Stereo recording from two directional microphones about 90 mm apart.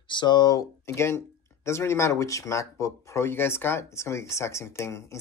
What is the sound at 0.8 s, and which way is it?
Speech, 30° left (ahead or behind).